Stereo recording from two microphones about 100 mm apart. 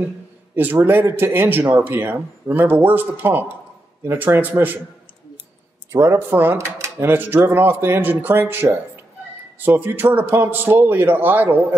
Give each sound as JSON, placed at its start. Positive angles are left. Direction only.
{"t": 0.6, "sound": "speech", "side_deg": -20}
{"t": 5.9, "sound": "speech", "side_deg": -25}